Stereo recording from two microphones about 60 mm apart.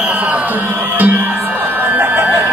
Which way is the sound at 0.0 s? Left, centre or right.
Right.